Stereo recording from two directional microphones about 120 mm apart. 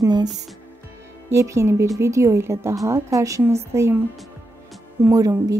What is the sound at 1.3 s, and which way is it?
A woman's voice, 25° right (ahead or behind).